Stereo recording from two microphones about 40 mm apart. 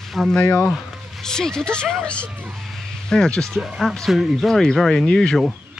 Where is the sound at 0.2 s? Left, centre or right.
Centre.